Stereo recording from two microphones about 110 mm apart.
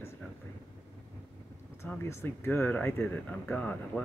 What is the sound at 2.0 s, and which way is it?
Speech, 20° left (ahead or behind).